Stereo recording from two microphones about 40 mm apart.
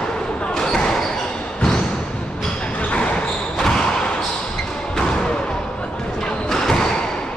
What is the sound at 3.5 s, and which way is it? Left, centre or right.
Basketball bounce, left.